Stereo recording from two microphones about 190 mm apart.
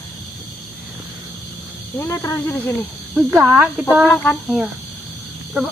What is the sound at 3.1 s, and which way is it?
A woman's voice, 10° right (ahead or behind).